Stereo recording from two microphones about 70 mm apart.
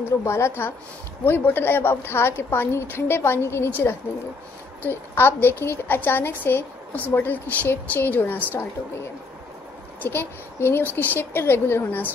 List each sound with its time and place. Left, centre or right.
0.2 s a woman's voice: left
10.0 s a woman's voice: left